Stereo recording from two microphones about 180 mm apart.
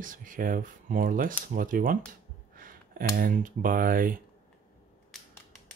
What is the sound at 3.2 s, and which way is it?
Speech, 50° right (ahead or behind).